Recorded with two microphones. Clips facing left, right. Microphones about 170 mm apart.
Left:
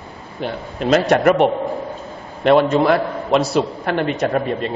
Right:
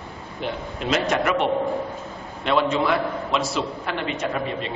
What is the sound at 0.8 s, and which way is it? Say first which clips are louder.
Speech: left 9 dB; 40° left (ahead or behind).